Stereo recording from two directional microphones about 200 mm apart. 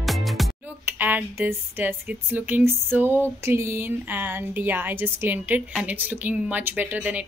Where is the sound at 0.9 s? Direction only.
10° right (ahead or behind).